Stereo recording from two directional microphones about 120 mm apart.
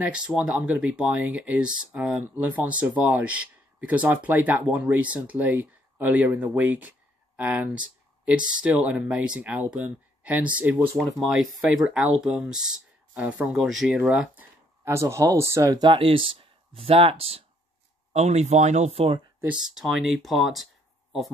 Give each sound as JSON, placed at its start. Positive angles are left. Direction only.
{"t": 0.0, "sound": "speech", "side_deg": -10}
{"t": 11.1, "sound": "speech", "side_deg": -5}
{"t": 15.8, "sound": "speech", "side_deg": -45}
{"t": 18.1, "sound": "speech", "side_deg": -65}
{"t": 19.4, "sound": "speech", "side_deg": -5}